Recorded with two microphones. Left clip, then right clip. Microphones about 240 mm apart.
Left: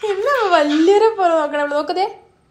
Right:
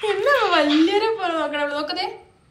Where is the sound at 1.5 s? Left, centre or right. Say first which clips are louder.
Left 6 dB; left.